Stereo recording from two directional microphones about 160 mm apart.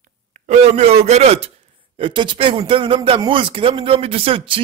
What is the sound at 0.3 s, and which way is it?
A man's voice, 45° right (ahead or behind).